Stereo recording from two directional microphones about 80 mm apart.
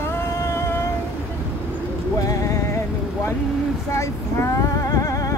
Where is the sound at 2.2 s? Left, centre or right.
Left.